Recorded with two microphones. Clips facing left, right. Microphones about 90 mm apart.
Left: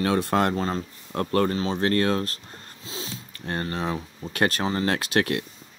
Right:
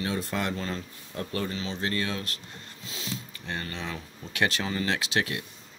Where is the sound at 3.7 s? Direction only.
45° left (ahead or behind).